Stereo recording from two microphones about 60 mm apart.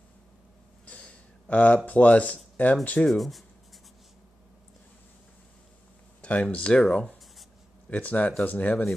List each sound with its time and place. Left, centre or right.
0.8 s a sound: left
1.9 s speech: left
3.1 s speech: centre
6.2 s speech: left